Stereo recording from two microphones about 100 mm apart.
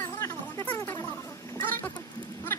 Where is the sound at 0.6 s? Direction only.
15° left (ahead or behind).